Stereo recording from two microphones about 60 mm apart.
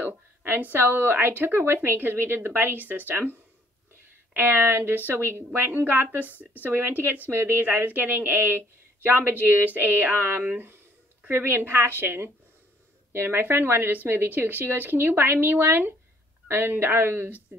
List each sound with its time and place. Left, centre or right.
0.0 s a woman's voice: right
4.4 s a woman's voice: right